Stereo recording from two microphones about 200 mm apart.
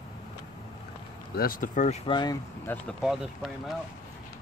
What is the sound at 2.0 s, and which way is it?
Speech, 20° left (ahead or behind).